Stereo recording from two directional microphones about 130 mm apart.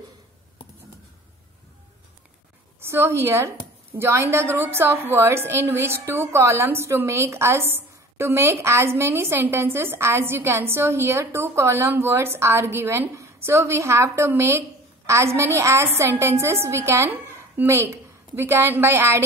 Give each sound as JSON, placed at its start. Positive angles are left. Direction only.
{"t": 2.8, "sound": "a woman's voice", "side_deg": -20}